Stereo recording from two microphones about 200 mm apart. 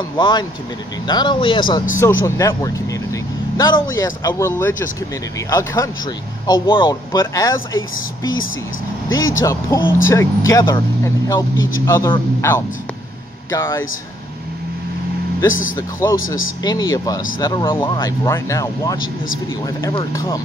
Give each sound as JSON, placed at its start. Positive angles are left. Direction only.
{"t": 0.2, "sound": "speech", "side_deg": 20}
{"t": 9.1, "sound": "speech", "side_deg": 80}
{"t": 9.4, "sound": "speech", "side_deg": 15}
{"t": 15.7, "sound": "speech", "side_deg": 15}